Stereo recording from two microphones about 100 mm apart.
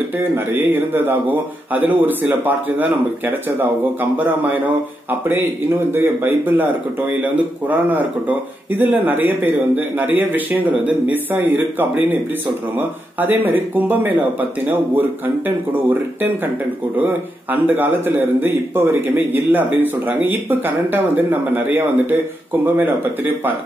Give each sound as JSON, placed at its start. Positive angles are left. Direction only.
{"t": 0.2, "sound": "a man's voice", "side_deg": -20}
{"t": 5.9, "sound": "a man's voice", "side_deg": -20}